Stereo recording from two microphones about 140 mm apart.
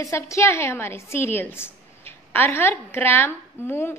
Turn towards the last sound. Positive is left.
turn(degrees=15)  # may be behind; listen again after turning